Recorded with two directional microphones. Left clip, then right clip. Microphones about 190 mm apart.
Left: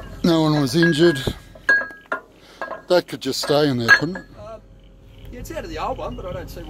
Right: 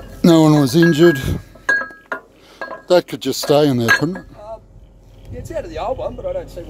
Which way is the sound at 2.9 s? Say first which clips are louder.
Right 4 dB; 40° right (ahead or behind).